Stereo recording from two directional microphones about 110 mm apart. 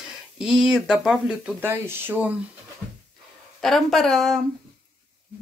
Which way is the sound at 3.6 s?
Centre (ahead or behind).